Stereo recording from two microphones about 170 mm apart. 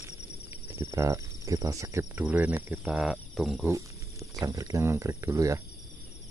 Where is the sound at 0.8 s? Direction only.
15° right (ahead or behind).